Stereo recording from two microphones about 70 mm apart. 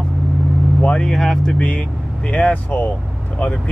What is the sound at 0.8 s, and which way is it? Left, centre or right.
Speech, centre.